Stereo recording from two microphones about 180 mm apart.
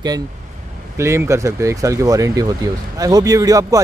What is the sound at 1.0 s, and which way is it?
Speech, 15° right (ahead or behind).